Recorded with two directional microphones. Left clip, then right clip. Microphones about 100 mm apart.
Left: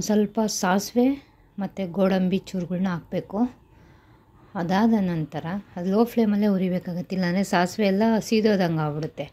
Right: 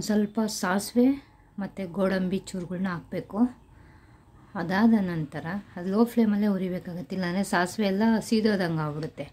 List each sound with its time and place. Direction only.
0.0 s a woman's voice: 25° left (ahead or behind)
4.6 s a woman's voice: 25° left (ahead or behind)